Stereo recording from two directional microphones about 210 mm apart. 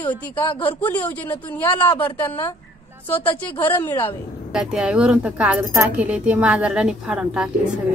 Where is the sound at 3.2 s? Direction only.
25° left (ahead or behind).